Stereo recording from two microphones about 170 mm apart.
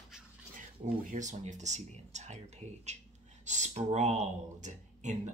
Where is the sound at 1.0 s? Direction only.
45° right (ahead or behind).